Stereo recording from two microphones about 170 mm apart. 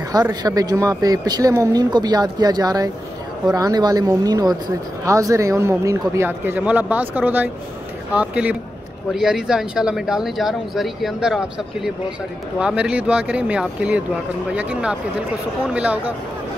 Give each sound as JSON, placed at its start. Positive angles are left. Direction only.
{"t": 0.1, "sound": "a man's voice", "side_deg": -20}